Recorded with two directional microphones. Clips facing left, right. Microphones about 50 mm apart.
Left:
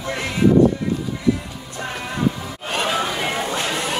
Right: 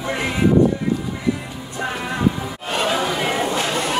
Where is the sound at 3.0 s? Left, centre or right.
Centre.